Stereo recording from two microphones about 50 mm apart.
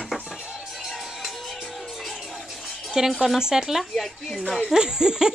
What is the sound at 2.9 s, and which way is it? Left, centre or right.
Speech, centre.